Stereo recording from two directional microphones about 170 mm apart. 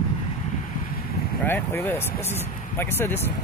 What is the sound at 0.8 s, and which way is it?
Boat, 60° left (ahead or behind).